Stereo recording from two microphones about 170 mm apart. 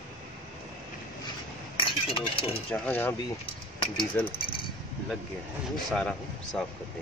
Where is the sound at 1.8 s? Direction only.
30° left (ahead or behind).